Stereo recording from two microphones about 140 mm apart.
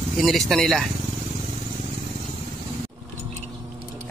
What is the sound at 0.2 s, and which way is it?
Speech, centre (ahead or behind).